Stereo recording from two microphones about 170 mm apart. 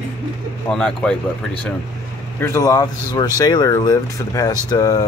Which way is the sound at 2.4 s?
15° left (ahead or behind).